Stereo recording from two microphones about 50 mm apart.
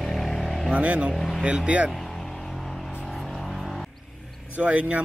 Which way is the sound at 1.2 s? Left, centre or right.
Centre.